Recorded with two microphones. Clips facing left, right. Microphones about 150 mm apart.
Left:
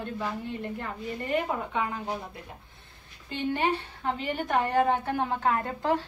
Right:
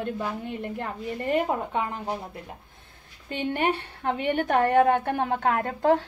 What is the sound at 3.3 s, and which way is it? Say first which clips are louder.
A woman's voice: right 2 dB; 55° right (ahead or behind).